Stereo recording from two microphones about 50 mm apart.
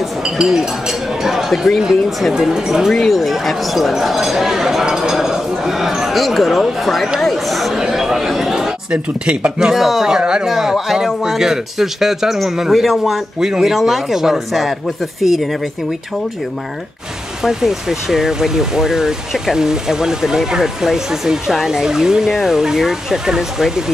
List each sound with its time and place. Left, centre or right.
0.5 s speech: centre
2.3 s speech: centre
2.9 s speech: centre
8.9 s speech: right
9.8 s speech: centre
17.4 s speech: centre